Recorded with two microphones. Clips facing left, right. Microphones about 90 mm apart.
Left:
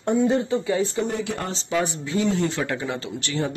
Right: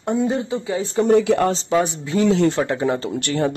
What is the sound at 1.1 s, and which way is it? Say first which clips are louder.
Speech: right 13 dB; 90° right.